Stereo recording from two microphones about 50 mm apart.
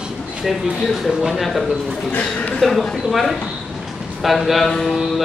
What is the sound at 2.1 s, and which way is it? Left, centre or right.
Speech, left.